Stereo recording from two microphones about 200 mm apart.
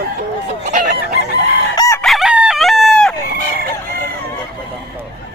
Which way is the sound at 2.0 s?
Centre (ahead or behind).